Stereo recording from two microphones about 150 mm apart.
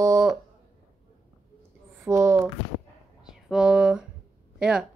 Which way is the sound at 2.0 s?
20° right (ahead or behind).